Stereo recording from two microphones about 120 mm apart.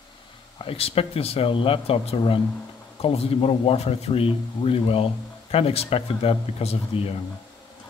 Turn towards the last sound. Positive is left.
turn(degrees=55)  # may be behind; listen again after turning